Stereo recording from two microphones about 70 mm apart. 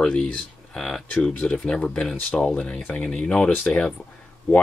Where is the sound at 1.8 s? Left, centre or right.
Centre.